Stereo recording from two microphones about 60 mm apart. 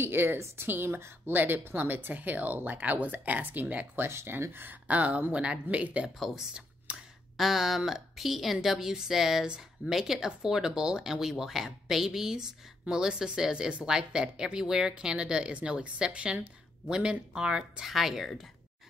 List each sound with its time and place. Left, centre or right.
0.0 s speech: right
4.1 s speech: right
6.0 s a woman's voice: centre